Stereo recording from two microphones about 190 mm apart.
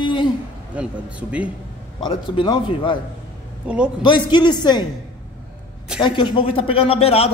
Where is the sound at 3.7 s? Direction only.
5° right (ahead or behind).